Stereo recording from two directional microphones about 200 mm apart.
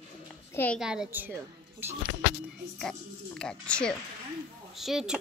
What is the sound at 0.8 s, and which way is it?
A woman's voice, 5° right (ahead or behind).